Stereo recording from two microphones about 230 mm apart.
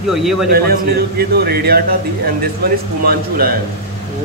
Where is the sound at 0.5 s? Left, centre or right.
Right.